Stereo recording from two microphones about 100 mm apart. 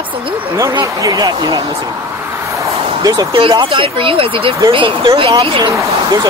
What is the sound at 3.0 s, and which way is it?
Speech, 40° right (ahead or behind).